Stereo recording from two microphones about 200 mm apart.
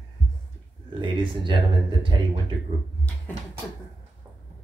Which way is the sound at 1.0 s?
25° right (ahead or behind).